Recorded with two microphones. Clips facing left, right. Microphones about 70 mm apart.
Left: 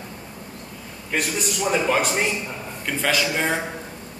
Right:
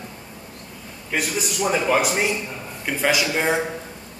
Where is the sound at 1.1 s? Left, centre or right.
Centre.